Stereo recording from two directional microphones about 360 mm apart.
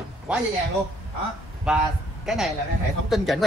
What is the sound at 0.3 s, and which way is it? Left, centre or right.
Speech, centre.